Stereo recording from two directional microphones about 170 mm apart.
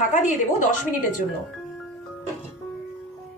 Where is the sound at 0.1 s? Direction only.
50° left (ahead or behind).